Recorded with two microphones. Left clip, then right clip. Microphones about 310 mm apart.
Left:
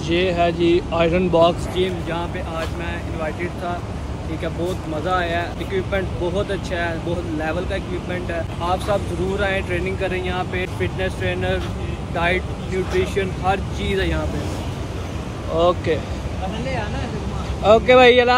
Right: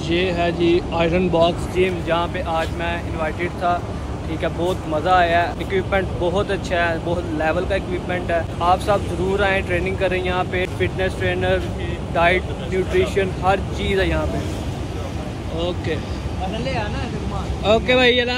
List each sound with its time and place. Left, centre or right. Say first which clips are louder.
0.1 s speech: left 2 dB; centre
5.0 s speech: right 6 dB; centre
15.5 s speech: left 7 dB; centre
17.6 s speech: left 4 dB; centre